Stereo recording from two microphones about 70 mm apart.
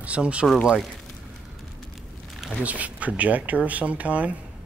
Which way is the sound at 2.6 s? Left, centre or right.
Right.